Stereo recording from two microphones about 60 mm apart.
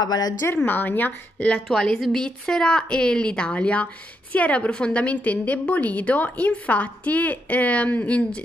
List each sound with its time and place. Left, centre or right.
0.0 s speech: left
0.7 s speech: left
1.7 s a woman's voice: centre; by 8.4 s left